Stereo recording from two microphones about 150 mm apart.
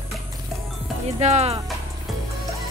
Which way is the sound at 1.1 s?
45° right (ahead or behind).